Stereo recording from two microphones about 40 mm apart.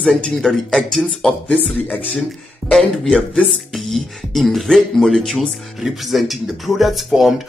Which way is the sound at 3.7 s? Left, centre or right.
Centre.